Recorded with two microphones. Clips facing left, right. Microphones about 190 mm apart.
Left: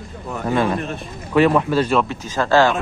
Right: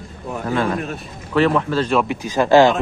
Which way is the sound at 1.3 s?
15° left (ahead or behind).